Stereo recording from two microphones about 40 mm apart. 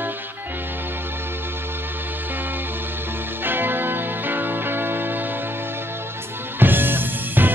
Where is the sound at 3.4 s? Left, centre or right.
Right.